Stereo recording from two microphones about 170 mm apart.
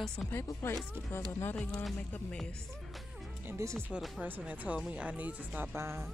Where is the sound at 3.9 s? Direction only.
5° right (ahead or behind).